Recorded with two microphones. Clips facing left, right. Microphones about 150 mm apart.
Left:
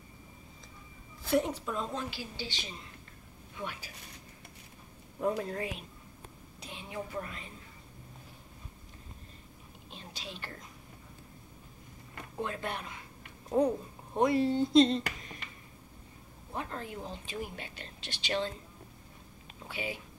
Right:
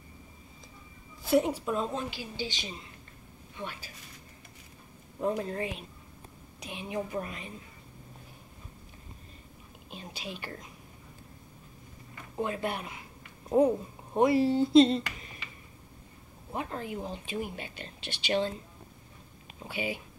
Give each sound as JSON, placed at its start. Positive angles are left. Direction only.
{"t": 1.2, "sound": "speech", "side_deg": -10}
{"t": 3.5, "sound": "speech", "side_deg": 10}
{"t": 5.2, "sound": "speech", "side_deg": 0}
{"t": 6.6, "sound": "speech", "side_deg": -15}
{"t": 9.8, "sound": "speech", "side_deg": -10}
{"t": 12.4, "sound": "speech", "side_deg": -10}
{"t": 15.0, "sound": "a sound", "side_deg": 50}
{"t": 16.5, "sound": "speech", "side_deg": -10}
{"t": 19.7, "sound": "speech", "side_deg": -5}